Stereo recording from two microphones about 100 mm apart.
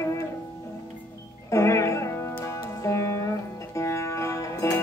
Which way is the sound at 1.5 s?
30° left (ahead or behind).